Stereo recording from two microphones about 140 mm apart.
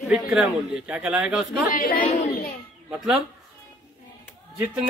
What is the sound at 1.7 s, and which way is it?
Speech, 90° left.